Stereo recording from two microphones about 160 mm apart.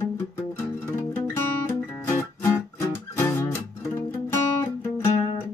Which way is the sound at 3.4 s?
15° left (ahead or behind).